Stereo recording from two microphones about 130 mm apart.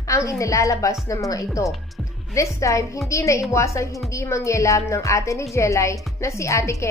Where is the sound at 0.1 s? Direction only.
25° left (ahead or behind).